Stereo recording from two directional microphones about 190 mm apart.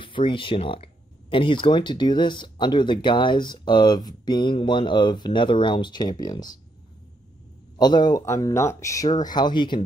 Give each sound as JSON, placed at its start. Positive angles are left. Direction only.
{"t": 0.0, "sound": "speech", "side_deg": 25}
{"t": 7.7, "sound": "speech", "side_deg": 20}